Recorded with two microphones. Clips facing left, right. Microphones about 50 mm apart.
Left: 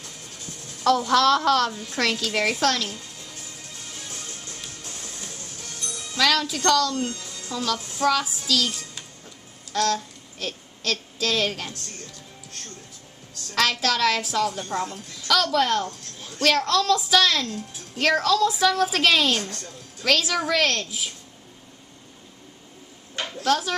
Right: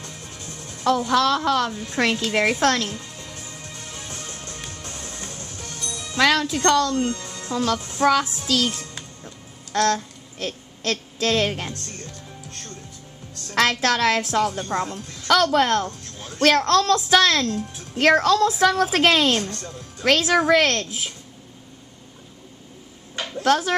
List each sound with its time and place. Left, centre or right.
0.8 s speech: centre
1.9 s a woman's voice: right
4.1 s music: right
6.1 s a woman's voice: right
8.5 s music: right
10.4 s a woman's voice: right
13.6 s a woman's voice: right
23.4 s a woman's voice: right